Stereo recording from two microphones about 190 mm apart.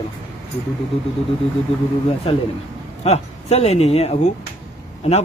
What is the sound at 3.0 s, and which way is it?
Speech, 35° left (ahead or behind).